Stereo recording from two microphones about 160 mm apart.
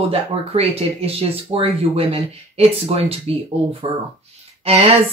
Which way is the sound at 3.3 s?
40° right (ahead or behind).